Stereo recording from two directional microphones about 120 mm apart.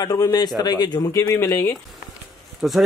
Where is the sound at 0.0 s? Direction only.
30° left (ahead or behind).